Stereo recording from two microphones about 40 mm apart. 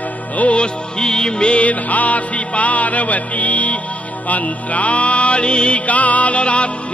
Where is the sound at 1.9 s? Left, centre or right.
Left.